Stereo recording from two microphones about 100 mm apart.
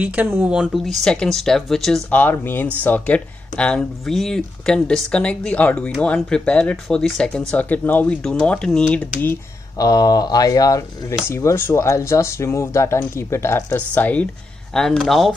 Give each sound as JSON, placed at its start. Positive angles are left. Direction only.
{"t": 0.0, "sound": "speech", "side_deg": -15}
{"t": 0.8, "sound": "speech", "side_deg": 5}
{"t": 2.0, "sound": "speech", "side_deg": 15}
{"t": 7.5, "sound": "speech", "side_deg": 15}
{"t": 9.8, "sound": "speech", "side_deg": 40}
{"t": 11.2, "sound": "speech", "side_deg": 25}
{"t": 13.7, "sound": "speech", "side_deg": 15}
{"t": 14.7, "sound": "speech", "side_deg": 5}